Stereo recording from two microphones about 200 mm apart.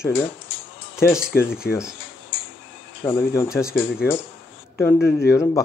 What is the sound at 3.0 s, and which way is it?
Speech, 10° left (ahead or behind).